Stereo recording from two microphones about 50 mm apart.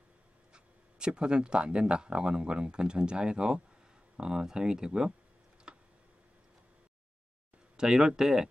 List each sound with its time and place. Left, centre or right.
0.5 s speech: centre
5.7 s a sound: centre
7.7 s speech: centre